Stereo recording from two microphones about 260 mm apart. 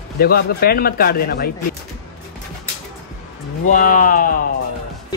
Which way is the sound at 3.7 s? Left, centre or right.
Left.